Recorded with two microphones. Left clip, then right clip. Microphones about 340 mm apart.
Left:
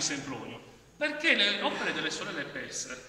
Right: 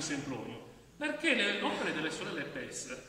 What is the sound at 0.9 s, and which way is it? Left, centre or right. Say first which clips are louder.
A man's voice: left 5 dB; centre.